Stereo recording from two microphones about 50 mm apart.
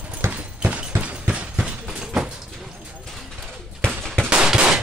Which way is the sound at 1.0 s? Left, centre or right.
Right.